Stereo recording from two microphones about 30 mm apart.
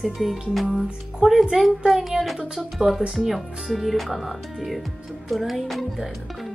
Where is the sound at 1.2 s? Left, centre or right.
Right.